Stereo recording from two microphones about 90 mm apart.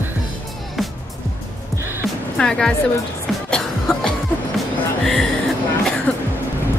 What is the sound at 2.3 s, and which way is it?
Speech, 10° left (ahead or behind).